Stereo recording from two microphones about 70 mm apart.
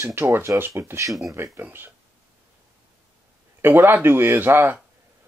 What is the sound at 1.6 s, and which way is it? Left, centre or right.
Speech, right.